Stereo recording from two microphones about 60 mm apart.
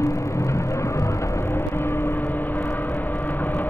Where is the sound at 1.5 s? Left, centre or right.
Left.